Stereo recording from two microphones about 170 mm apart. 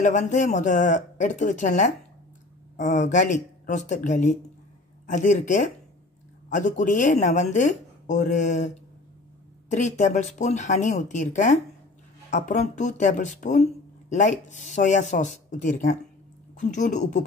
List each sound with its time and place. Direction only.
0.0 s speech: 45° left (ahead or behind)